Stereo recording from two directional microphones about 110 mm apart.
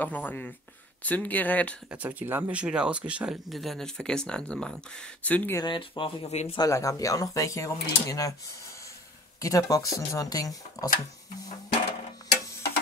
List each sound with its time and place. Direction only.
0.0 s speech: 15° left (ahead or behind)
1.9 s speech: 15° right (ahead or behind)
3.4 s speech: centre (ahead or behind)
5.6 s speech: 45° left (ahead or behind)
6.2 s speech: 75° left (ahead or behind)
6.7 s speech: 30° left (ahead or behind)